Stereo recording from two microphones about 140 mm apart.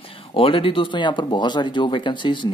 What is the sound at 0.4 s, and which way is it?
Speech, 40° left (ahead or behind).